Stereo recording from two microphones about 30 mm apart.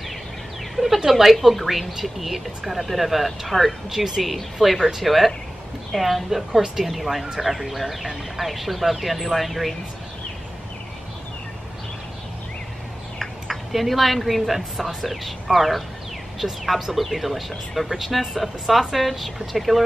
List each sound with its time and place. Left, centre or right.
0.7 s a sound: centre
1.4 s speech: centre
13.2 s speech: centre